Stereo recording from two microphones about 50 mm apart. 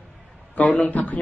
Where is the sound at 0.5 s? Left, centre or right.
Left.